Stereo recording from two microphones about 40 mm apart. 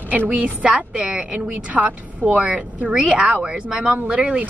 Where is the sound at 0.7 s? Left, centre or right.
Right.